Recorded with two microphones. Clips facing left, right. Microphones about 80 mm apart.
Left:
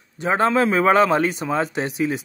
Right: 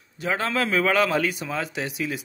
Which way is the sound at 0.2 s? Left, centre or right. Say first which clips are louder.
Left 7 dB; left.